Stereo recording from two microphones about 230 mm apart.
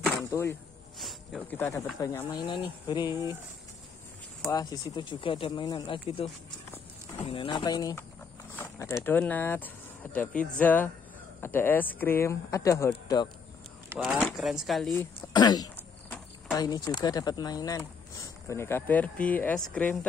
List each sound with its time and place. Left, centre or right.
0.3 s speech: centre
0.9 s speech: centre
4.5 s speech: centre
7.2 s speech: left
8.5 s a sound: centre
9.0 s speech: centre
13.8 s speech: centre
15.3 s throat clearing: centre
16.5 s speech: centre